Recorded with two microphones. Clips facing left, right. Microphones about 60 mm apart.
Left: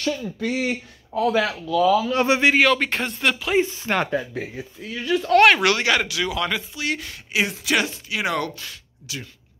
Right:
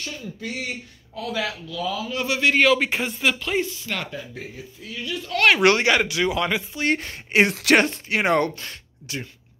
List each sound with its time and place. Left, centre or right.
0.0 s speech: left
1.1 s a man's voice: left
2.5 s speech: centre
3.6 s speech: left
4.4 s a man's voice: left
5.6 s speech: right
6.8 s speech: right
7.3 s speech: right
7.7 s speech: right